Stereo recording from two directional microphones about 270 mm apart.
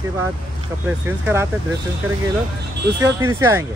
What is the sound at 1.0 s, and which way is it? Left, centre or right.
Speech, centre.